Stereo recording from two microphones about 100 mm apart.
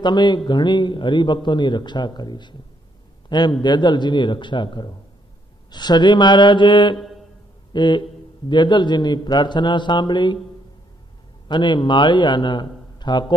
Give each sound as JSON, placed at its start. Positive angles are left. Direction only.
{"t": 0.0, "sound": "a man's voice", "side_deg": 50}
{"t": 11.4, "sound": "a man's voice", "side_deg": 50}